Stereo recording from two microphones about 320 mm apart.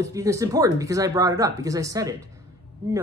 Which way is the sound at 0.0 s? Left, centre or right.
Centre.